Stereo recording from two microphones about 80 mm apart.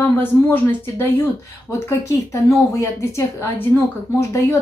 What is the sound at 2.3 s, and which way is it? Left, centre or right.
A woman's voice, left.